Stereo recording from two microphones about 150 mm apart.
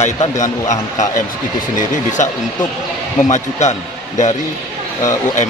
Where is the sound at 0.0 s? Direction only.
50° left (ahead or behind).